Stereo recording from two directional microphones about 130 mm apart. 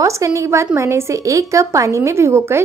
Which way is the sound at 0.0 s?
25° right (ahead or behind).